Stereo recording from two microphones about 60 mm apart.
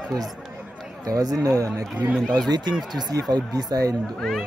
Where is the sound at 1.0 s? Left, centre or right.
Right.